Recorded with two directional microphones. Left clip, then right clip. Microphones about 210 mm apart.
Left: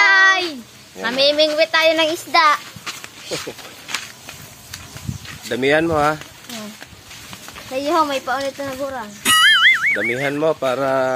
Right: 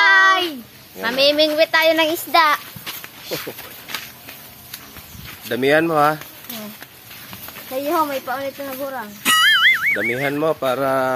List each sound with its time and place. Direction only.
0.0 s child singing: 15° right (ahead or behind)
1.0 s a child's voice: 20° right (ahead or behind)
2.8 s a sound: 10° right (ahead or behind)
3.3 s speech: centre (ahead or behind)
5.5 s speech: 10° right (ahead or behind)
7.8 s speech: 5° left (ahead or behind)